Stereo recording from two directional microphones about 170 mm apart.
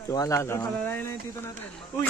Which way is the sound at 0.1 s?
20° left (ahead or behind).